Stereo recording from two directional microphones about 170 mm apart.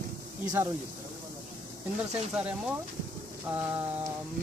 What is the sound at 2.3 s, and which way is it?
Speech, 5° right (ahead or behind).